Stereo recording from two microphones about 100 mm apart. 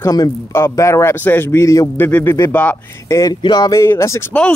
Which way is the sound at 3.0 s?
30° left (ahead or behind).